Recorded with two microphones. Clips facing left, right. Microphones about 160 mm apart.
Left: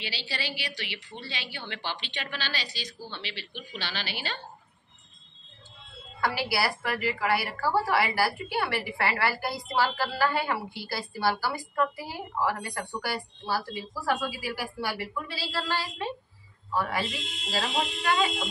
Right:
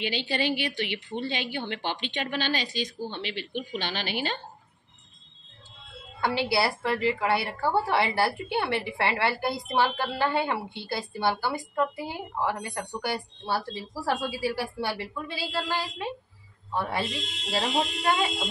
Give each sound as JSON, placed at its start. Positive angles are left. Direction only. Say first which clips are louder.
{"t": 0.0, "sound": "a woman's voice", "louder": "right 8 dB", "side_deg": -50}
{"t": 6.2, "sound": "a woman's voice", "louder": "right 3 dB", "side_deg": -25}
{"t": 16.7, "sound": "a woman's voice", "louder": "even", "side_deg": -25}